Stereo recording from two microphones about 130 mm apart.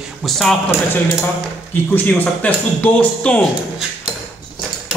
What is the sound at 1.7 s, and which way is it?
Speech, 15° left (ahead or behind).